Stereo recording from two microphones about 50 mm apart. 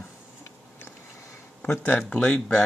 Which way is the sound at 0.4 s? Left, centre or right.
Left.